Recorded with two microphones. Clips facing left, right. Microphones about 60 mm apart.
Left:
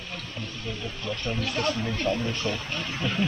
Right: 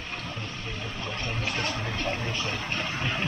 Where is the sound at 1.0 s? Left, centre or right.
Right.